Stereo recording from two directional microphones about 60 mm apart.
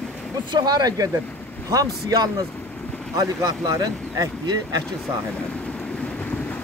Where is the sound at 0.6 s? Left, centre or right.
Right.